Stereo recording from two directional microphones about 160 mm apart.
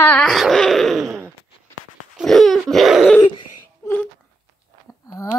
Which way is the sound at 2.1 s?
Centre (ahead or behind).